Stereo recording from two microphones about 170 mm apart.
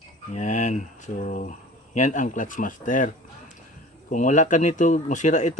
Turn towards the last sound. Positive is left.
turn(degrees=45)  # may be behind; listen again after turning